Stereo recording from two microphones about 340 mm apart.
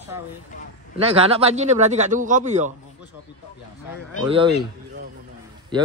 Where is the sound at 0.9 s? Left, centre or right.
Centre.